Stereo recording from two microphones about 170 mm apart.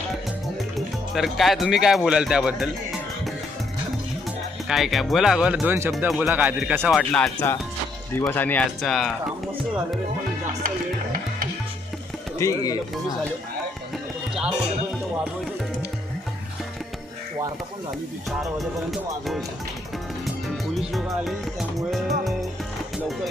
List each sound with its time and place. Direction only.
0.7 s speech: centre (ahead or behind)
4.6 s speech: centre (ahead or behind)
7.0 s speech: 5° left (ahead or behind)
10.6 s music: 60° right (ahead or behind)
12.4 s speech: 15° left (ahead or behind)
18.4 s speech: centre (ahead or behind)
20.4 s music: centre (ahead or behind)